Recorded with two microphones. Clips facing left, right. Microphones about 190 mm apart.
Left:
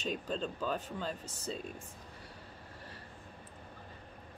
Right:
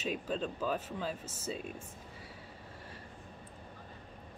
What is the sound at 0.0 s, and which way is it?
Speech, 5° right (ahead or behind).